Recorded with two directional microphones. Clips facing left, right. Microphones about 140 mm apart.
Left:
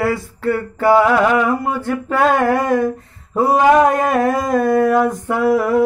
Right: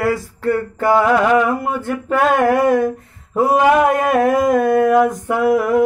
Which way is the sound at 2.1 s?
15° right (ahead or behind).